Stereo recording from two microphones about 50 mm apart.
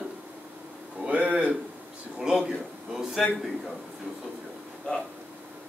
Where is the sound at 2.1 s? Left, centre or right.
Centre.